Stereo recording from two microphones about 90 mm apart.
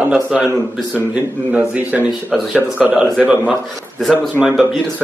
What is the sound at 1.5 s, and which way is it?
Speech, 15° right (ahead or behind).